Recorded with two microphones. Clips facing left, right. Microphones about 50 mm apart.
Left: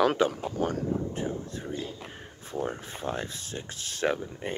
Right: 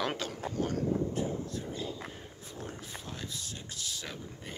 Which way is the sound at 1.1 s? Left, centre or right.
Left.